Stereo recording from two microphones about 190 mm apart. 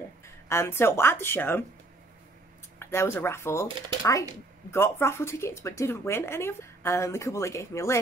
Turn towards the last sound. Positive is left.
turn(degrees=15)  # may be behind; listen again after turning